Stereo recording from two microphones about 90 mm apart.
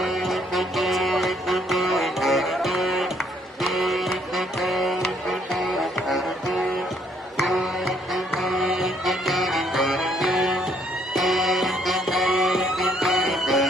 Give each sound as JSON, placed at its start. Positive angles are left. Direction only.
{"t": 0.0, "sound": "music", "side_deg": 0}